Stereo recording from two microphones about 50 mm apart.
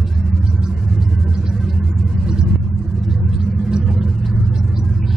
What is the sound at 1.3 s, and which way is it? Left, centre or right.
Vehicle, centre.